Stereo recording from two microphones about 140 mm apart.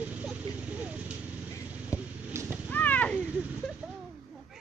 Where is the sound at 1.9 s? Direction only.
20° left (ahead or behind).